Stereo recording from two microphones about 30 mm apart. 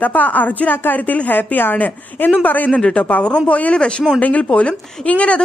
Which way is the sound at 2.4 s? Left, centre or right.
Left.